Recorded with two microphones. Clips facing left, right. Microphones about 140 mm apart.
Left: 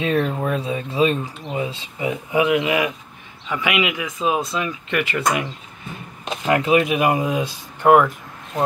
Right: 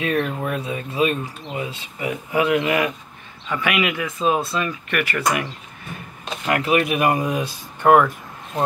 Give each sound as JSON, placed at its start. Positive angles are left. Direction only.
{"t": 0.0, "sound": "speech", "side_deg": 30}